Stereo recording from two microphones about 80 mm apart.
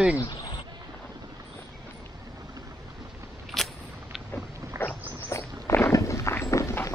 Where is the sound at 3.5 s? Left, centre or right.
Centre.